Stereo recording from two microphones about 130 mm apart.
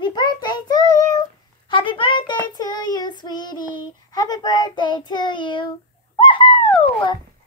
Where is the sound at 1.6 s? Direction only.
40° left (ahead or behind).